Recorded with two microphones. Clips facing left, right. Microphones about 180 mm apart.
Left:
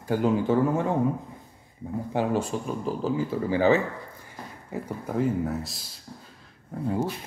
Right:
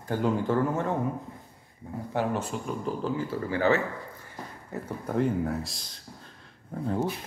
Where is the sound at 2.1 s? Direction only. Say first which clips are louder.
Left 3 dB; 10° left (ahead or behind).